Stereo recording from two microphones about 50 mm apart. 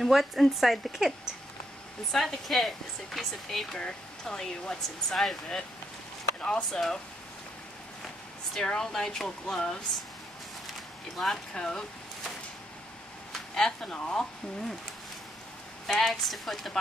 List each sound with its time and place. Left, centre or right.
0.0 s speech: centre
2.1 s speech: centre
3.7 s speech: centre
6.4 s speech: centre
8.5 s speech: centre
10.7 s a sound: centre
11.5 s speech: centre
13.6 s speech: centre
15.9 s speech: centre